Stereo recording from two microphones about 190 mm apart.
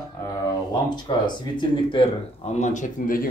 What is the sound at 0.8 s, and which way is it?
Speech, 25° left (ahead or behind).